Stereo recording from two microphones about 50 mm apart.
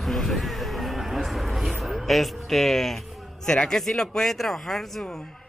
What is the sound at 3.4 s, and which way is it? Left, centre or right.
A woman's voice, centre.